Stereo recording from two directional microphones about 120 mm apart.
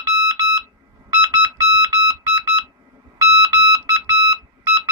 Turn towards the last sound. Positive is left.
turn(degrees=-25)  # may be behind; listen again after turning